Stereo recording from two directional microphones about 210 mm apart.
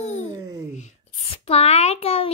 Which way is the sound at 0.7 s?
30° left (ahead or behind).